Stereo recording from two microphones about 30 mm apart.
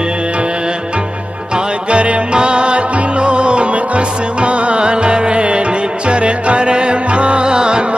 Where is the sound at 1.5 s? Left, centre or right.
Right.